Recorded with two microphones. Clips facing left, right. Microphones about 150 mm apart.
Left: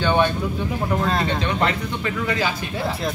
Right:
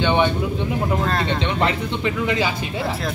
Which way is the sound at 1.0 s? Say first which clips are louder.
Even; centre (ahead or behind).